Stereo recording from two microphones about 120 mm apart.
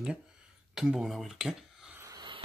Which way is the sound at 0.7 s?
5° right (ahead or behind).